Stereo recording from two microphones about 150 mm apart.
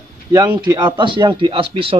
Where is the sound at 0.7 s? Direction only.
30° right (ahead or behind).